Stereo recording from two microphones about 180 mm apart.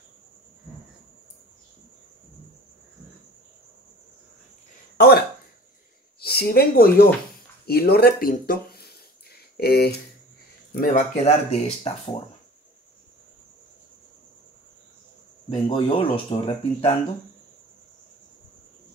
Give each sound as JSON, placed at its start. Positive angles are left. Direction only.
{"t": 4.9, "sound": "speech", "side_deg": 60}
{"t": 7.6, "sound": "a sound", "side_deg": 60}
{"t": 10.7, "sound": "speech", "side_deg": 50}
{"t": 15.5, "sound": "speech", "side_deg": 30}